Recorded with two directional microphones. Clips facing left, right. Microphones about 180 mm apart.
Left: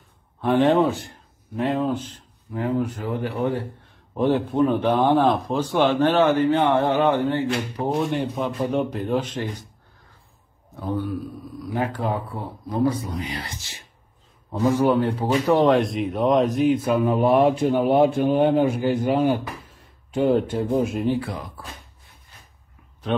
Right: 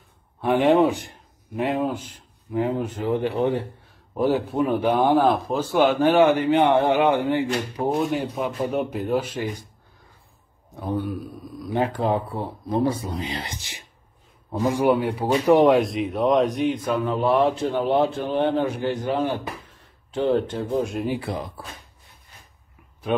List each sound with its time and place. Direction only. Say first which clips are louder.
0.4 s a man's voice: even; 10° right (ahead or behind)
4.1 s a man's voice: left 1 dB; 5° right (ahead or behind)
10.8 s a man's voice: even; 15° right (ahead or behind)
15.8 s speech: even; centre (ahead or behind)
21.2 s speech: right 1 dB; 25° right (ahead or behind)
23.1 s a man's voice: right 1 dB; 10° right (ahead or behind)